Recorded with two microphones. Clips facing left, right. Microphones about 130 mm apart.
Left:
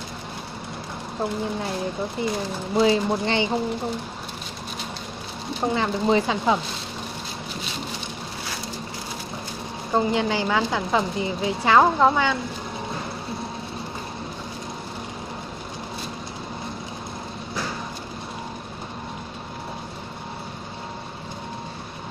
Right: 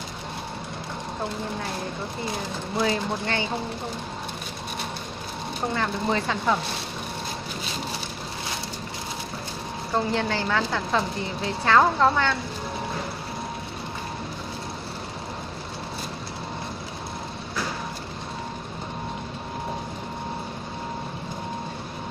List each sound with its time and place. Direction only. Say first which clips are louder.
2.8 s a woman's voice: left 6 dB; 15° left (ahead or behind)
5.7 s a woman's voice: left 5 dB; 15° left (ahead or behind)
9.9 s a woman's voice: left 3 dB; 10° left (ahead or behind)